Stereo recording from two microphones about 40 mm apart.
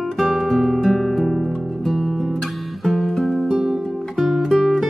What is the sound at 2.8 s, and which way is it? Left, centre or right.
Music, centre.